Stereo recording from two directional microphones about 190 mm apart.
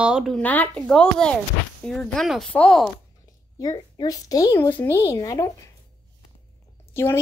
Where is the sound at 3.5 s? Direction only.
20° left (ahead or behind).